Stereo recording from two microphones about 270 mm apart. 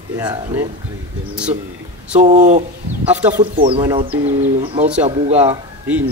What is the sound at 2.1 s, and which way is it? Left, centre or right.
Speech, right.